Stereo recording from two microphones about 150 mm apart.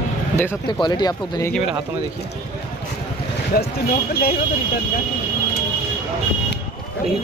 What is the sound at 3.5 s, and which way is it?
Speech, 90° left.